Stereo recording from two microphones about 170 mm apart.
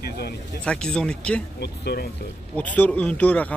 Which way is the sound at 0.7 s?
5° left (ahead or behind).